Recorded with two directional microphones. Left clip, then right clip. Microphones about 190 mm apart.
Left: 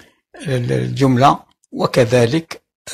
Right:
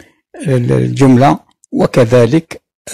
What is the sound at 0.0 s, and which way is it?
Speech, 50° right (ahead or behind).